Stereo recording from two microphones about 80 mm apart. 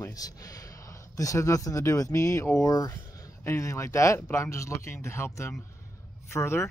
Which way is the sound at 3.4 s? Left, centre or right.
Left.